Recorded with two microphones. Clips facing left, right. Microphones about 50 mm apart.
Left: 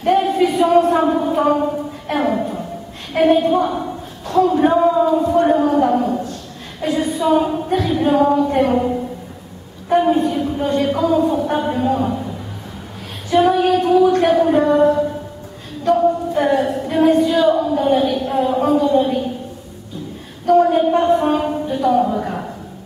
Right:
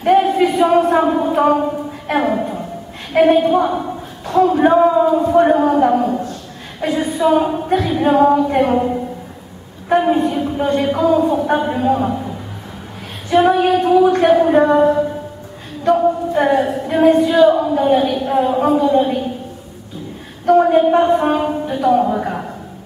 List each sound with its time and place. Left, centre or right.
0.0 s a sound: centre
2.0 s a woman's voice: centre
9.8 s a sound: centre
10.2 s a woman's voice: centre
13.3 s a woman's voice: centre
20.4 s a woman's voice: centre